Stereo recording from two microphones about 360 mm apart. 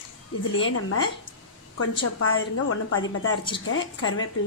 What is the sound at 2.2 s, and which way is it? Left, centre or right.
Speech, left.